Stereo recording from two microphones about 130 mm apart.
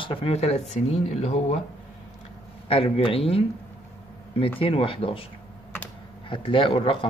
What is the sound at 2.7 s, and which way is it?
Speech, 45° left (ahead or behind).